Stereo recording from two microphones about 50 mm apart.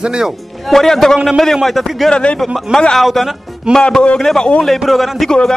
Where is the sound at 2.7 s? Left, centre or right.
Centre.